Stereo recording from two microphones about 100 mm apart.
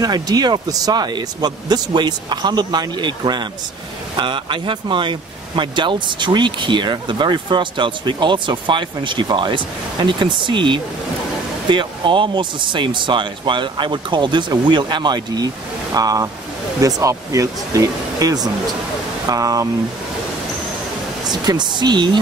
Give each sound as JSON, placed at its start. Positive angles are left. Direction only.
{"t": 0.0, "sound": "speech", "side_deg": -40}
{"t": 21.3, "sound": "speech", "side_deg": -45}